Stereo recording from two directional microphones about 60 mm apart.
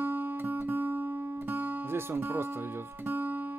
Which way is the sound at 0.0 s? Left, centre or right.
Right.